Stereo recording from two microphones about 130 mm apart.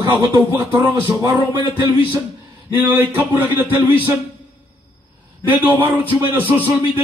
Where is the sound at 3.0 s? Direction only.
15° right (ahead or behind).